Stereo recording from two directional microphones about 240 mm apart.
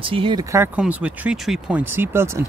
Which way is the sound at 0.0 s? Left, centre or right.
Right.